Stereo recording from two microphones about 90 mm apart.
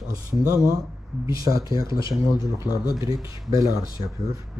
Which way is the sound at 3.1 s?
40° right (ahead or behind).